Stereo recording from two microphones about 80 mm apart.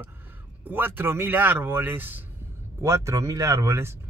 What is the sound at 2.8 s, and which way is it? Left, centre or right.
Speech, right.